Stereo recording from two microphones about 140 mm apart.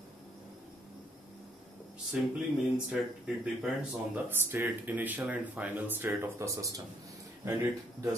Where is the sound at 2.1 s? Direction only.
5° right (ahead or behind); by 6.8 s 25° right (ahead or behind).